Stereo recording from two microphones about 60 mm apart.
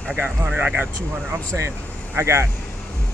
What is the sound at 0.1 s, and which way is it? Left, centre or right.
Speech, right.